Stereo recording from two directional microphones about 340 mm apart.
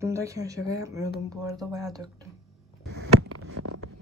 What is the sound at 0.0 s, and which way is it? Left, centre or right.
Speech, centre.